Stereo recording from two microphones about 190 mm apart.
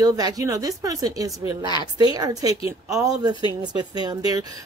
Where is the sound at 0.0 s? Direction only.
20° right (ahead or behind).